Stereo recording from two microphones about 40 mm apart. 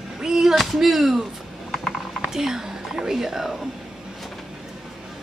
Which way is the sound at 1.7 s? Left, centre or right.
Centre.